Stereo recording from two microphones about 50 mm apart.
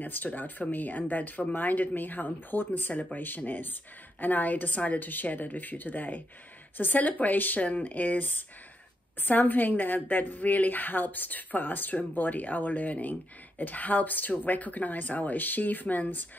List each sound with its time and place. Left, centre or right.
0.0 s speech: left